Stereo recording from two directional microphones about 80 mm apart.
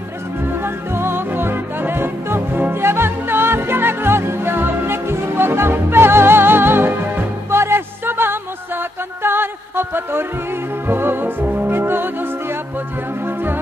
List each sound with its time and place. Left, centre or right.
0.4 s music: right